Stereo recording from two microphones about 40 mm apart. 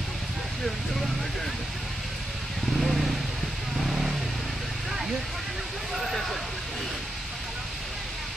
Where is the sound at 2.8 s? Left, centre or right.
Centre.